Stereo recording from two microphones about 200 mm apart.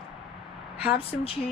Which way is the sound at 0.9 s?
30° left (ahead or behind).